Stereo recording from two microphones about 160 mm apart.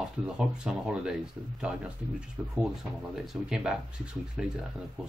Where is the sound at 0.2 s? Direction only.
5° right (ahead or behind).